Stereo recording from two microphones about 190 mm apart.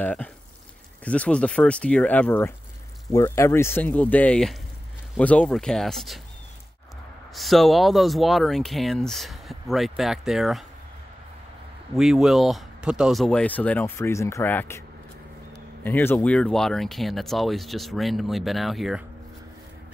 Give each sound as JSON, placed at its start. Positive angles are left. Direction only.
{"t": 0.0, "sound": "speech", "side_deg": 10}
{"t": 7.3, "sound": "speech", "side_deg": 0}
{"t": 11.9, "sound": "speech", "side_deg": 0}
{"t": 15.8, "sound": "speech", "side_deg": 10}